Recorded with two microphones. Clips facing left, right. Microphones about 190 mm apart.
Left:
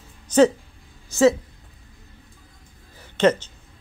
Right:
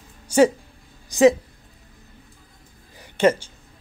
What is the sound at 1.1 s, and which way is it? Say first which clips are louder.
Speech: right 2 dB; 15° right (ahead or behind).